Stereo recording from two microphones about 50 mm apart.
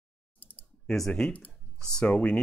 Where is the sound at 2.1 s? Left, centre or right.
Left.